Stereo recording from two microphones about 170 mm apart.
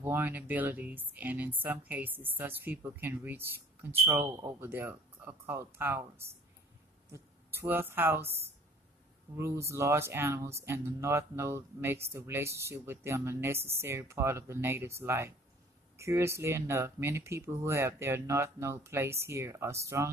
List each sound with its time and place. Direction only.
0.0 s speech: 10° right (ahead or behind)
7.1 s a woman's voice: 15° right (ahead or behind)
9.4 s speech: 15° right (ahead or behind)